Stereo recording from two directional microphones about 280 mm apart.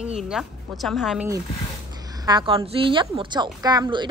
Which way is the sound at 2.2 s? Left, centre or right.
Centre.